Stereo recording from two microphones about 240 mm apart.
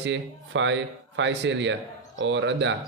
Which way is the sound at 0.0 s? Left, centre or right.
Right.